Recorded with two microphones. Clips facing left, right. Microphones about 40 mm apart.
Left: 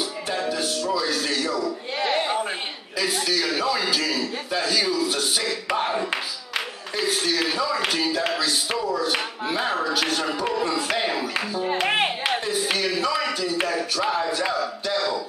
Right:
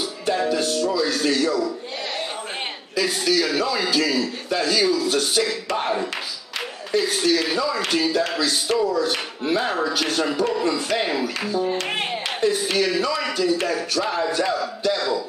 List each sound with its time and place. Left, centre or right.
0.3 s music: centre
2.0 s a sound: centre
3.0 s a man's voice: centre
11.6 s a man's voice: centre